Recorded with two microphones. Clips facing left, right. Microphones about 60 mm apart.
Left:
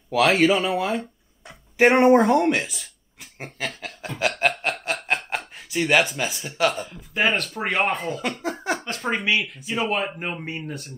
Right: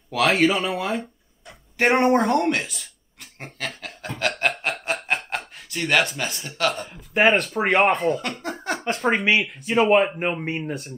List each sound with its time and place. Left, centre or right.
0.1 s speech: centre
3.3 s snicker: centre
5.7 s speech: centre
9.9 s speech: right
10.7 s speech: centre